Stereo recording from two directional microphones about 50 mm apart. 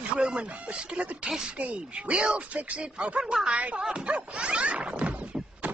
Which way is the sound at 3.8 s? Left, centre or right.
Right.